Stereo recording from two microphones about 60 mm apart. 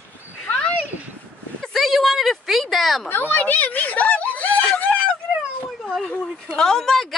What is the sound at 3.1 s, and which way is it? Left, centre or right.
Speech, left.